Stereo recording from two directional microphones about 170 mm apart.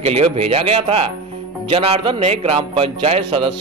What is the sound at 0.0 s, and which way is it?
A man's voice, 35° right (ahead or behind).